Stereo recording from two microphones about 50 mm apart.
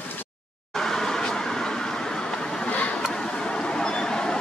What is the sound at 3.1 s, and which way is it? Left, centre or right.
Vehicle, centre.